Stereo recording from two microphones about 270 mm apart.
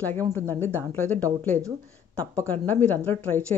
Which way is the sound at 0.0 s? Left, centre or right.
Centre.